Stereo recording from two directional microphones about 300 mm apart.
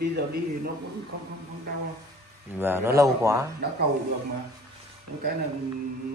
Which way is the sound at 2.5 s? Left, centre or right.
Centre.